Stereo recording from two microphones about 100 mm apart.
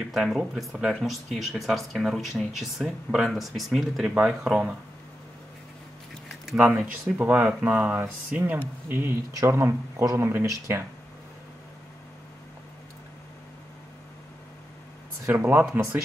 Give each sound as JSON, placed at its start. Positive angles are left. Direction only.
{"t": 0.0, "sound": "speech", "side_deg": -5}
{"t": 6.4, "sound": "a sound", "side_deg": -5}
{"t": 7.2, "sound": "speech", "side_deg": -15}
{"t": 15.3, "sound": "speech", "side_deg": -20}